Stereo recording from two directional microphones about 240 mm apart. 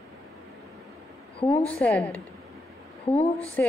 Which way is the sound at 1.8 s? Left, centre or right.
Centre.